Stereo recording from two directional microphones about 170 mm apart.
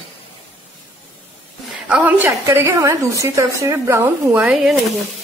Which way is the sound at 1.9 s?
10° right (ahead or behind).